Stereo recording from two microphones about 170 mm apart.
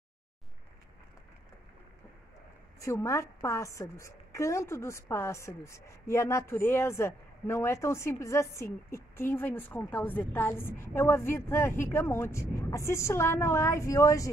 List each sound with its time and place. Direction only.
2.8 s a woman's voice: 15° left (ahead or behind)